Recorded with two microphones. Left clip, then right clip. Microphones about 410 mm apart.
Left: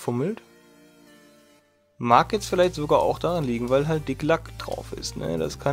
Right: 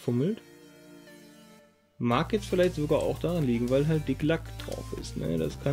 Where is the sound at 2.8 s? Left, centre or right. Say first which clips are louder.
Left 7 dB; left.